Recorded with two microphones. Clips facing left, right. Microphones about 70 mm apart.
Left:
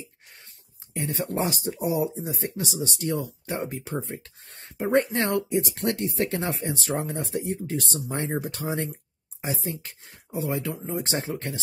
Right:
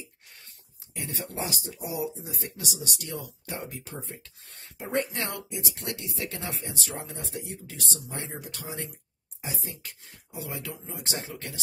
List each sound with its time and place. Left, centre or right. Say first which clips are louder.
0.9 s speech: left 7 dB; left
9.5 s speech: left 8 dB; left